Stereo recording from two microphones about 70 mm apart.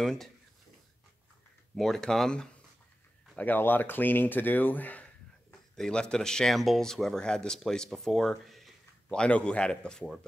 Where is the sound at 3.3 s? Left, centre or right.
Left.